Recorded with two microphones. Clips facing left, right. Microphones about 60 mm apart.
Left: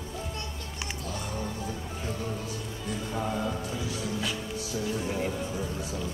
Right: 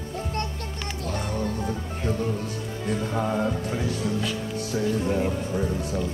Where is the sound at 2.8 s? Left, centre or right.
Right.